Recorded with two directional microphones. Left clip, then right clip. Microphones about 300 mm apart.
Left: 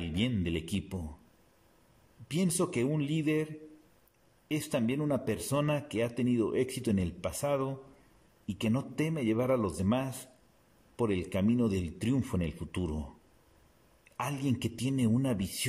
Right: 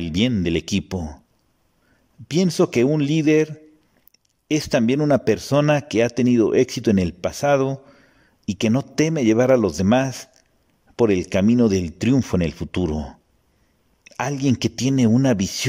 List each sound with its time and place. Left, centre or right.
0.0 s a man's voice: right
2.2 s a man's voice: right
4.5 s a man's voice: right